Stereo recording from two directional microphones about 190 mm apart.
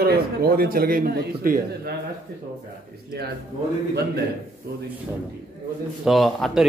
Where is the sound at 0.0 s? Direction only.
55° right (ahead or behind).